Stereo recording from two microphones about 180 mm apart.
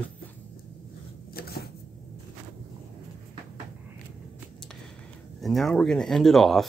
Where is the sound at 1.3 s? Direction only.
60° left (ahead or behind).